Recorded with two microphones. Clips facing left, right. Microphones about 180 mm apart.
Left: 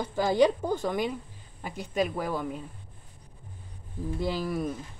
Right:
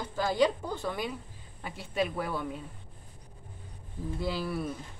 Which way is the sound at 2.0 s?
Centre (ahead or behind).